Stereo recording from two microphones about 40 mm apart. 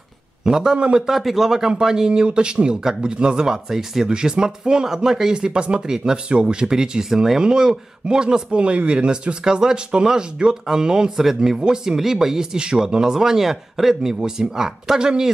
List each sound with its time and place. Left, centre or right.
0.5 s speech: centre
0.7 s speech: right
1.0 s speech: centre
8.5 s speech: right